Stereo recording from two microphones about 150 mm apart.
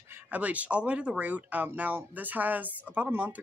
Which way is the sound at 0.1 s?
10° right (ahead or behind).